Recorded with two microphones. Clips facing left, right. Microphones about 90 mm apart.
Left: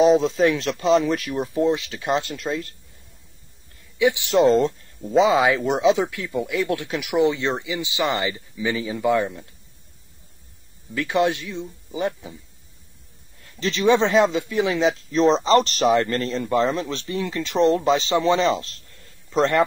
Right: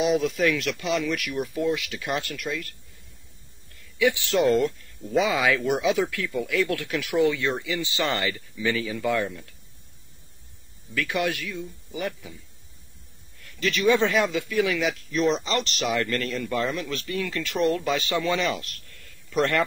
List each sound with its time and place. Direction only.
0.0 s speech: 30° left (ahead or behind)
4.0 s speech: 20° left (ahead or behind)
11.0 s speech: 25° left (ahead or behind)
13.4 s speech: 25° left (ahead or behind)